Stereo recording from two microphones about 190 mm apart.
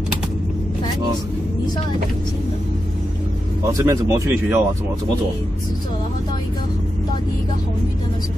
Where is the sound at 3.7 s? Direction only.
15° right (ahead or behind).